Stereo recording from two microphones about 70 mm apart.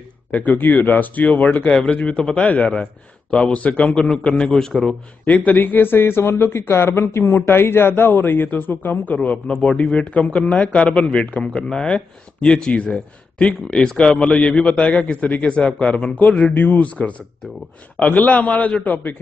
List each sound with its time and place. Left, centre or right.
0.3 s a man's voice: left; by 4.9 s centre
5.2 s a man's voice: left